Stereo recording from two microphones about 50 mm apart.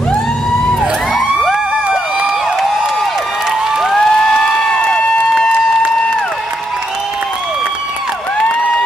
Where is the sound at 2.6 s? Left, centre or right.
Centre.